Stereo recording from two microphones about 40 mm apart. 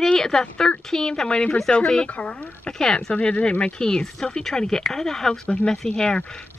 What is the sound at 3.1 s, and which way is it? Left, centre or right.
Speech, left.